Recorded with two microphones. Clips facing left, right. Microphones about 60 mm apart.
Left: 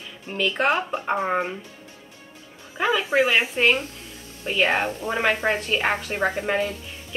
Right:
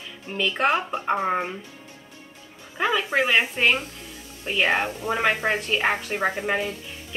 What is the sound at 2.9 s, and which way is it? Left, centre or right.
Speech, centre.